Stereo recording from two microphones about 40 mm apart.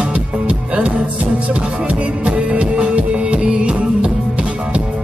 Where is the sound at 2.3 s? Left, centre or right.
Right.